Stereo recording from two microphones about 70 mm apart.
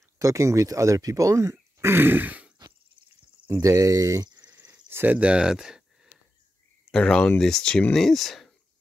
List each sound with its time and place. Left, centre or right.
0.2 s speech: right
3.6 s speech: right
4.8 s a sound: right; by 6.1 s centre
6.9 s speech: centre